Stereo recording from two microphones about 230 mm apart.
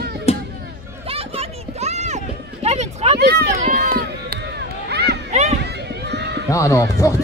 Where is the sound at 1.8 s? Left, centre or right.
Right.